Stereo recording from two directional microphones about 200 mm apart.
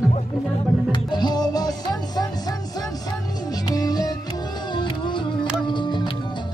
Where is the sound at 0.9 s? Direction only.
20° left (ahead or behind).